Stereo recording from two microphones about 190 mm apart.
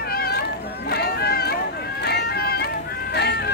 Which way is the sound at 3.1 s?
60° left (ahead or behind).